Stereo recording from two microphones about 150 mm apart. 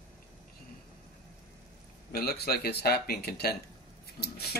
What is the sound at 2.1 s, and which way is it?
Speech, 90° left.